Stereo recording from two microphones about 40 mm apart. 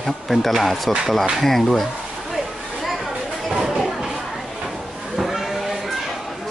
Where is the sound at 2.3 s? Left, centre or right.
Centre.